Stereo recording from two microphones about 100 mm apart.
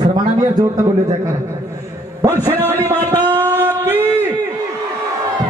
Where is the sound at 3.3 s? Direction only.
20° right (ahead or behind).